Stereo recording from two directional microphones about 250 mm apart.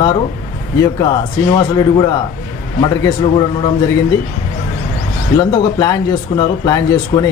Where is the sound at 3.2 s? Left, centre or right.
Left.